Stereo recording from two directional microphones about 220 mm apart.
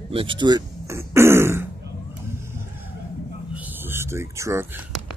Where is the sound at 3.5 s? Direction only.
10° right (ahead or behind).